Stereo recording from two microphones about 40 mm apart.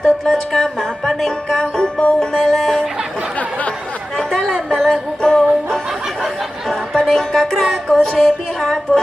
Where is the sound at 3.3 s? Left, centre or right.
Left.